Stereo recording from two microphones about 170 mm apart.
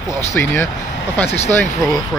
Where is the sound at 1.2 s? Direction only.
40° left (ahead or behind).